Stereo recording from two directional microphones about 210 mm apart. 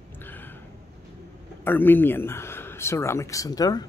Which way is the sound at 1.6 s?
10° left (ahead or behind).